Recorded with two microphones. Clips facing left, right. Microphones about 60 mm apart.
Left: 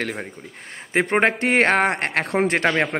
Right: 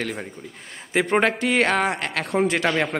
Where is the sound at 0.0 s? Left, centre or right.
Left.